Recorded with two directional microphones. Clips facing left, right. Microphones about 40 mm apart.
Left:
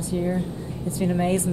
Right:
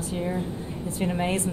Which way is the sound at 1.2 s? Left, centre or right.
Right.